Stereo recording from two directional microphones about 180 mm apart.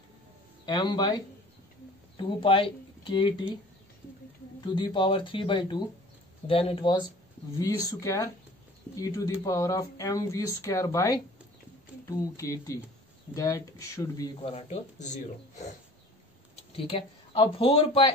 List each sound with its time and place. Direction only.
0.7 s speech: 25° left (ahead or behind)
4.6 s speech: 25° left (ahead or behind)
14.4 s speech: 35° left (ahead or behind)
16.7 s speech: 30° left (ahead or behind)